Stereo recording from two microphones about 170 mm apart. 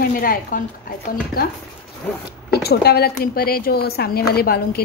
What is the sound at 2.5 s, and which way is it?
A woman's voice, 70° left (ahead or behind).